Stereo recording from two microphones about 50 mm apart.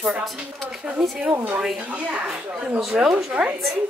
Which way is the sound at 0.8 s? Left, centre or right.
Right.